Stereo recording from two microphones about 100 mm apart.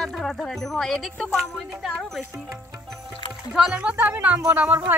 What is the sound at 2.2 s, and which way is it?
Speech, 10° right (ahead or behind).